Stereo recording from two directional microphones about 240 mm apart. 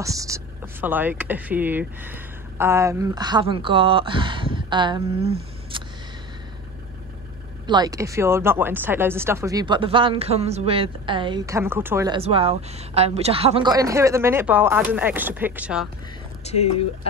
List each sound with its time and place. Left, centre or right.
0.0 s speech: centre
7.6 s speech: centre
12.2 s speech: right; by 15.9 s centre
16.4 s speech: left